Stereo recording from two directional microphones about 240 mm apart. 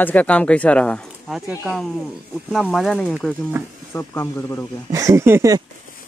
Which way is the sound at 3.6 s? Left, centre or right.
Centre.